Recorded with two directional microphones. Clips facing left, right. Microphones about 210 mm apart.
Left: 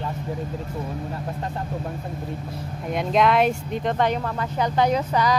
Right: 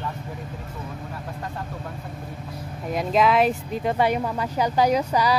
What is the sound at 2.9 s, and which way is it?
Speech, centre (ahead or behind).